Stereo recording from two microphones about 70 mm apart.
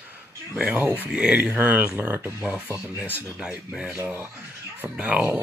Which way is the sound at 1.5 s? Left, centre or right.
Right.